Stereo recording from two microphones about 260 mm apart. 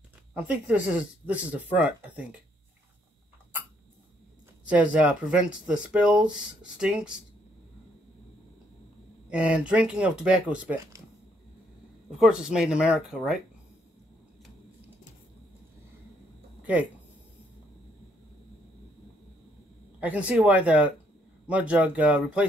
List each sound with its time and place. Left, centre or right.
0.3 s speech: centre
4.6 s speech: centre
9.3 s speech: centre
12.2 s speech: centre
20.0 s speech: centre